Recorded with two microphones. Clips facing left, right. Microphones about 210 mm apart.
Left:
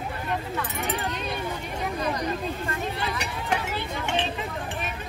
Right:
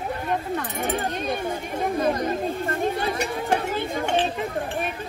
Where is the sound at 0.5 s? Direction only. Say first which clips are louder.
Right 3 dB; 50° right (ahead or behind).